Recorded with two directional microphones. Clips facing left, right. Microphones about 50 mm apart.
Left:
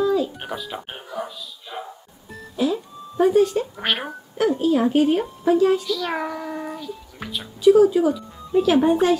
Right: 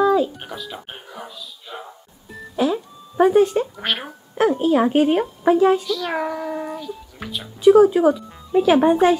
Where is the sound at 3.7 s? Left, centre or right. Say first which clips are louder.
Left 1 dB; centre.